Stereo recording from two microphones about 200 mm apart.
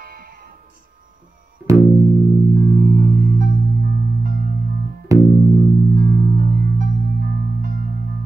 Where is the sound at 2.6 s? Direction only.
45° right (ahead or behind).